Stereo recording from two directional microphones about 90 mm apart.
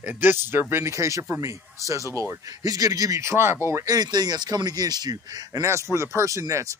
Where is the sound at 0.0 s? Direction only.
20° right (ahead or behind).